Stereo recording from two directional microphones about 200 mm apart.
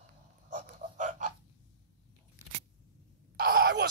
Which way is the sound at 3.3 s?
55° right (ahead or behind).